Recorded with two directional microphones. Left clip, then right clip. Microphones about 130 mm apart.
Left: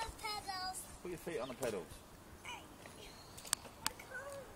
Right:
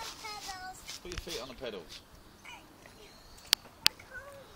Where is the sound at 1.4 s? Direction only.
20° left (ahead or behind).